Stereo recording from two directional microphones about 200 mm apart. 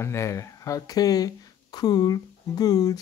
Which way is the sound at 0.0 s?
15° left (ahead or behind).